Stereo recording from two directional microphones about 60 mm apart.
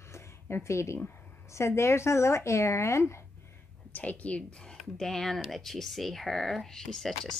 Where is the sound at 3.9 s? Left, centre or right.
Left.